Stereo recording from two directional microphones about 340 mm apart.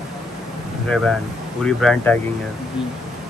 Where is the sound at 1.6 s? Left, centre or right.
Centre.